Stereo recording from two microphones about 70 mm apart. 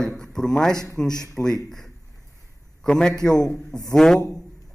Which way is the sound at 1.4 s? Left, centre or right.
Left.